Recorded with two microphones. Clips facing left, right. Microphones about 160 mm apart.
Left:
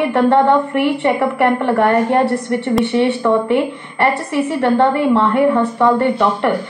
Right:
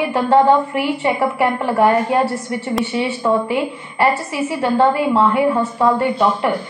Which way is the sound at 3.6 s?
5° right (ahead or behind).